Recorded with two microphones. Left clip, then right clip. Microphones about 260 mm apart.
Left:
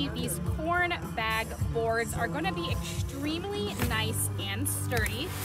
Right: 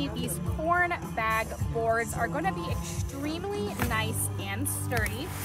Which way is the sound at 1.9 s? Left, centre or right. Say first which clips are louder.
Right 4 dB; centre.